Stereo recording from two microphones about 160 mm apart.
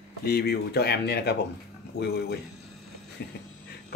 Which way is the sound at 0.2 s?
80° left.